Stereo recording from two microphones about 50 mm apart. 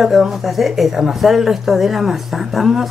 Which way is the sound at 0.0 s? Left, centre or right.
Centre.